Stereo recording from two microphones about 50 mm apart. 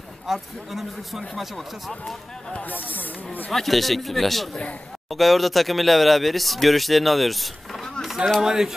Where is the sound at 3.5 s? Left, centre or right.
Centre.